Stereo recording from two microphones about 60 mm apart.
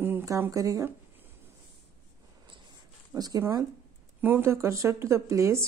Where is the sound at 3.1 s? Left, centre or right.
Right.